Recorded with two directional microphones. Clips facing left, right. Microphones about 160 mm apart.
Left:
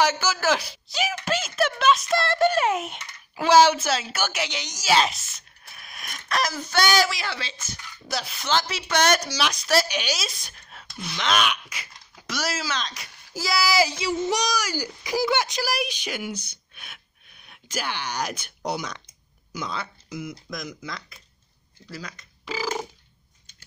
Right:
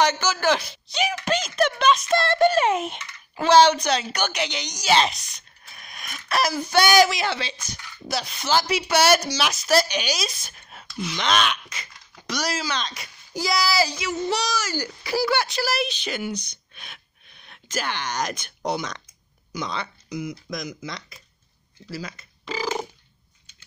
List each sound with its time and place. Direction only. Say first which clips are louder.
0.0 s speech: right 1 dB; 5° left (ahead or behind); by 7.5 s 20° right (ahead or behind)
8.1 s a woman's voice: right 2 dB; centre (ahead or behind)
8.5 s a woman's voice: right 3 dB; 10° right (ahead or behind); by 13.7 s 5° left (ahead or behind)
13.7 s a woman's voice: left 1 dB; 20° left (ahead or behind); by 22.2 s 5° right (ahead or behind)
22.4 s a sound: right 1 dB; 5° left (ahead or behind)